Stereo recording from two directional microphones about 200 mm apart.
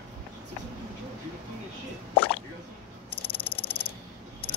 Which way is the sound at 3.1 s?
30° left (ahead or behind).